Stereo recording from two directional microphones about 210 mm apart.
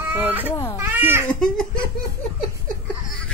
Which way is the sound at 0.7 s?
10° right (ahead or behind).